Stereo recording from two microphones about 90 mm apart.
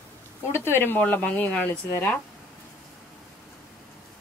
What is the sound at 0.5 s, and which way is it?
Speech, 25° left (ahead or behind).